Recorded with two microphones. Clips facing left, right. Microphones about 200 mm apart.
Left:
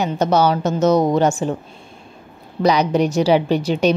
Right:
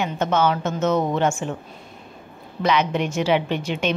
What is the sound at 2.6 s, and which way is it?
A woman's voice, 35° left (ahead or behind).